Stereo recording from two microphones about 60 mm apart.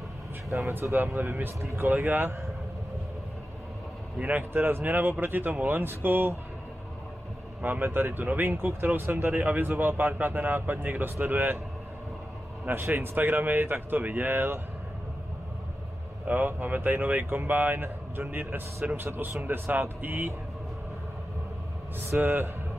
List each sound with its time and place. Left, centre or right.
0.7 s speech: right
2.0 s speech: right
4.2 s speech: right
7.6 s speech: right
12.6 s speech: right
16.3 s speech: right
22.2 s speech: right